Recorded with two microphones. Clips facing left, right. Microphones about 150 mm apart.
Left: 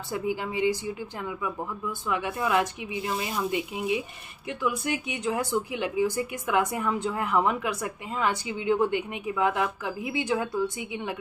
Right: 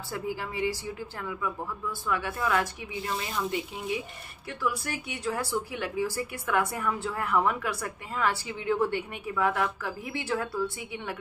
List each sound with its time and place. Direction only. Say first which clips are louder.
0.1 s a woman's voice: left 4 dB; 20° left (ahead or behind)